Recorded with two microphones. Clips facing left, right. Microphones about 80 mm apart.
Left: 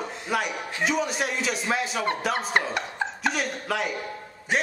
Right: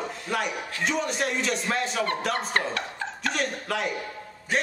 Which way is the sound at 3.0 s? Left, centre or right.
Centre.